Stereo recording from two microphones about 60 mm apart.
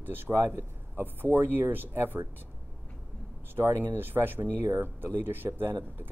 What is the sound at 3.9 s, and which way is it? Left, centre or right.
Speech, right.